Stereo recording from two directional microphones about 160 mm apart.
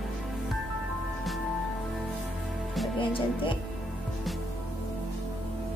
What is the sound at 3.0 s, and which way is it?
Music, 30° left (ahead or behind).